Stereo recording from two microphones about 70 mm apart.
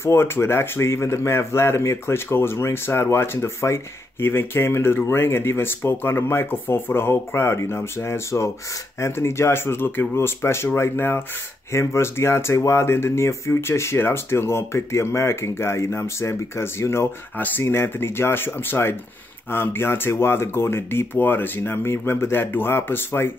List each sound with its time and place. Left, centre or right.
0.0 s speech: left
17.4 s speech: left